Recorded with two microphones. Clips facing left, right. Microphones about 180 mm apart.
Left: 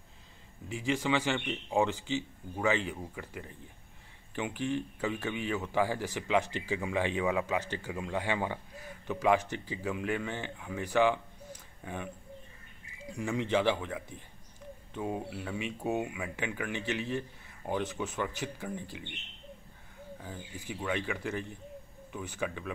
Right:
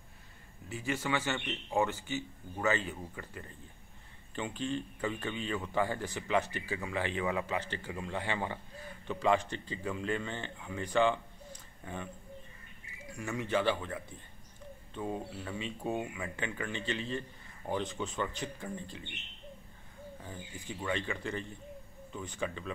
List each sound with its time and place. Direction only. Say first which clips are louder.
0.7 s speech: left 4 dB; 15° left (ahead or behind)
13.1 s speech: left 3 dB; 15° left (ahead or behind)
20.2 s speech: left 3 dB; 5° left (ahead or behind)